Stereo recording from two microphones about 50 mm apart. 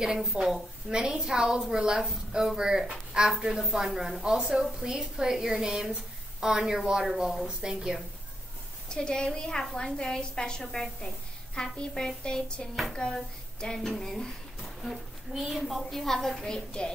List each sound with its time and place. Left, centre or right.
0.0 s a woman's voice: centre
8.8 s a woman's voice: centre